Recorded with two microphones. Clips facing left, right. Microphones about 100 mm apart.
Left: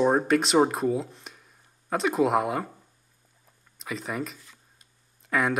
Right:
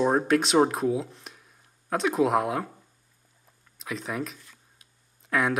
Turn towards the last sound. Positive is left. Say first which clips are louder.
# even
turn(degrees=0)  # may be behind; listen again after turning